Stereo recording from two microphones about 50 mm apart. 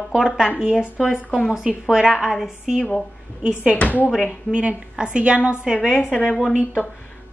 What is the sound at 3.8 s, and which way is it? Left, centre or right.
Speech, left.